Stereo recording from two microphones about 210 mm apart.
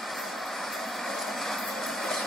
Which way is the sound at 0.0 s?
Centre (ahead or behind).